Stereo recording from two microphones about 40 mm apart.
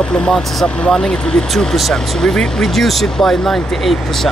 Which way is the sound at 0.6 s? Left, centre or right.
Left.